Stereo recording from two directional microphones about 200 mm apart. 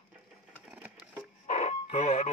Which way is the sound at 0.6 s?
5° right (ahead or behind).